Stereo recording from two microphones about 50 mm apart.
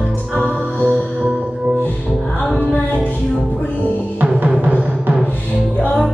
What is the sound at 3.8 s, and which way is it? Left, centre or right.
Music, right.